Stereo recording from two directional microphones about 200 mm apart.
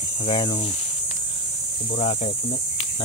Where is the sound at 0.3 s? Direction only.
25° left (ahead or behind).